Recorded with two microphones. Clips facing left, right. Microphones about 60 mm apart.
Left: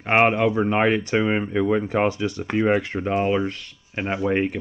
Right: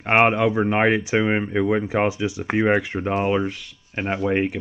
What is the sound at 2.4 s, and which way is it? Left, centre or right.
Speech, right.